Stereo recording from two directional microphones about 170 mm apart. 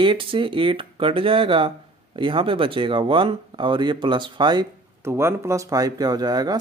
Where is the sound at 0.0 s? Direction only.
30° right (ahead or behind).